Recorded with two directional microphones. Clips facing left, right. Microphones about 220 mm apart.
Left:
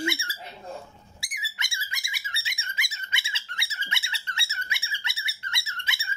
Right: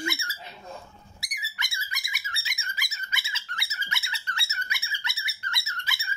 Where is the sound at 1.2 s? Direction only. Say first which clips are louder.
Even; 30° left (ahead or behind).